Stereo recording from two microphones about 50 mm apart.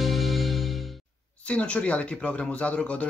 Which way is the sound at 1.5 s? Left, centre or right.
Left.